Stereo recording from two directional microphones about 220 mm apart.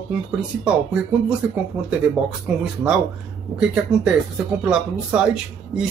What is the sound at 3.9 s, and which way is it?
Speech, 5° right (ahead or behind).